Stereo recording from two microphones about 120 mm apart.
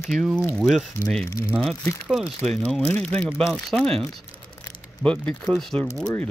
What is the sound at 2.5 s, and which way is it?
Speech, 70° right (ahead or behind).